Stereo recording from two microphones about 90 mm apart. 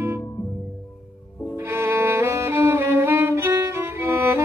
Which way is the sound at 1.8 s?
25° right (ahead or behind).